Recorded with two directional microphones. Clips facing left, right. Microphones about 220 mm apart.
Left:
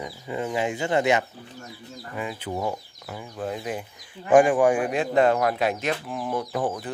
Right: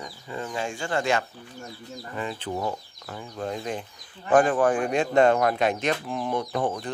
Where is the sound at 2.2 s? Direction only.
10° left (ahead or behind).